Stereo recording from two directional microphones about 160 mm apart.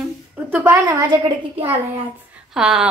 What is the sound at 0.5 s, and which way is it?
Speech, 15° right (ahead or behind).